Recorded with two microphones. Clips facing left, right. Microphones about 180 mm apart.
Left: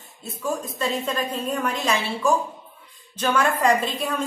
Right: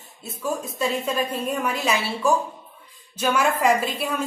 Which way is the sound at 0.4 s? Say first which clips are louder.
Right 1 dB; 10° right (ahead or behind).